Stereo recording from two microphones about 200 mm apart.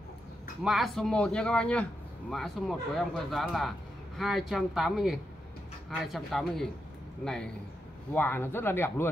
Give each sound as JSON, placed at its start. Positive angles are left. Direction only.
{"t": 0.7, "sound": "speech", "side_deg": 0}